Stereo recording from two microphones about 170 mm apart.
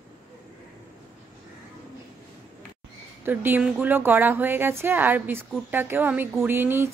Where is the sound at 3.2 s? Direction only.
10° right (ahead or behind).